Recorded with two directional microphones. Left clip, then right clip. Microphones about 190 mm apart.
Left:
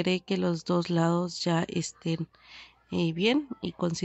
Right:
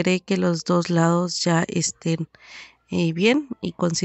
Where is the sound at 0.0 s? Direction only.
30° right (ahead or behind).